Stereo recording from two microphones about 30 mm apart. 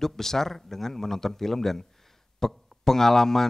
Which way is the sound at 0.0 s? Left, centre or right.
Centre.